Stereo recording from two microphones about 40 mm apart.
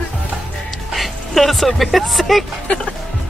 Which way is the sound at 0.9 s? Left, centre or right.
Centre.